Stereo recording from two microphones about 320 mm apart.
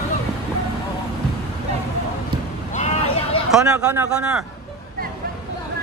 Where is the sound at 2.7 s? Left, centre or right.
Centre.